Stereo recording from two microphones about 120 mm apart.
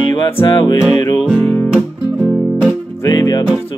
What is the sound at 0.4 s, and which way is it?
Music, 40° left (ahead or behind).